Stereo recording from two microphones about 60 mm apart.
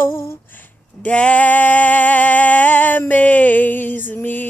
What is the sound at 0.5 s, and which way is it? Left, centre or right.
Female singing, left.